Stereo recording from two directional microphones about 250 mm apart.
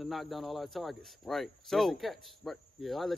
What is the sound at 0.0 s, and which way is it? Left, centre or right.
Speech, centre.